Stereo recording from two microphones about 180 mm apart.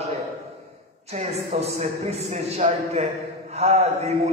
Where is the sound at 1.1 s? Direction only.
40° right (ahead or behind).